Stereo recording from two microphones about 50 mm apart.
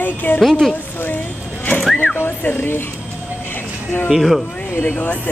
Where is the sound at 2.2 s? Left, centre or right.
Left.